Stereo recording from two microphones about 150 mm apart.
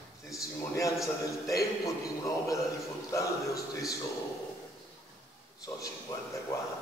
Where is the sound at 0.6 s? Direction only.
20° left (ahead or behind).